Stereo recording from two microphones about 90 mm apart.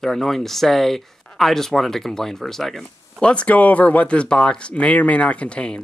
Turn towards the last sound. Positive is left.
turn(degrees=10)  # may be behind; listen again after turning